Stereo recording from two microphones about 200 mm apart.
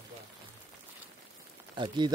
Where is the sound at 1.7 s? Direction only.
25° right (ahead or behind).